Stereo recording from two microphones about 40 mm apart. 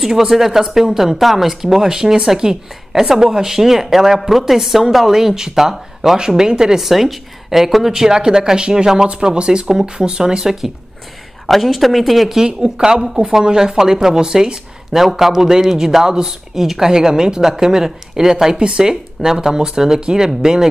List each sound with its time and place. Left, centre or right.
0.0 s a woman's voice: centre
12.4 s speech: right